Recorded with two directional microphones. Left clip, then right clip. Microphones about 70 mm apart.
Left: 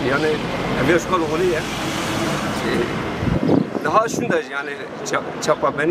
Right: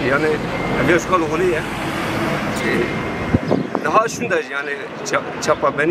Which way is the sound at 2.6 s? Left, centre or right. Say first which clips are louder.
Right 3 dB; left.